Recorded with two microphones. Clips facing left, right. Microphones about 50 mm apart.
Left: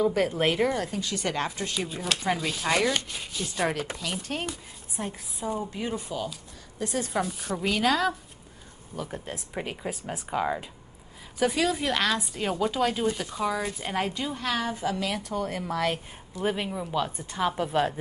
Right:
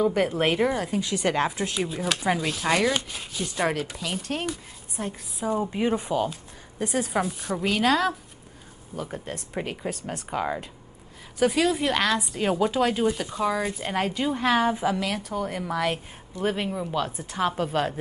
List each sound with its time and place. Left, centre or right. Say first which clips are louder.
0.0 s a woman's voice: right 1 dB; centre
5.5 s speech: right 6 dB; right
7.0 s speech: right 3 dB; centre
14.3 s speech: right 7 dB; right
15.2 s speech: right 1 dB; centre